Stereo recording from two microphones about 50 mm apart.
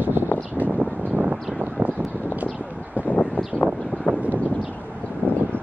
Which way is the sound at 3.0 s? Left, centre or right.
Left.